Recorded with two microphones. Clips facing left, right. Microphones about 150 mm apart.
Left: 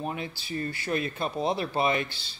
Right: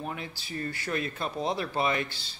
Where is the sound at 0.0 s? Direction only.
20° left (ahead or behind).